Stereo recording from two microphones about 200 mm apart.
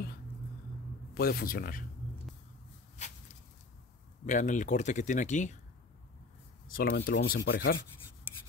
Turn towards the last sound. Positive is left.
turn(degrees=55)  # may be behind; listen again after turning